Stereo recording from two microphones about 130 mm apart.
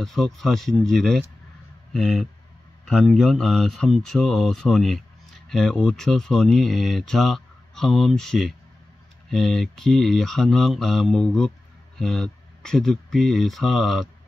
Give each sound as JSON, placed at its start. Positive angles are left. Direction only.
{"t": 0.0, "sound": "speech", "side_deg": 5}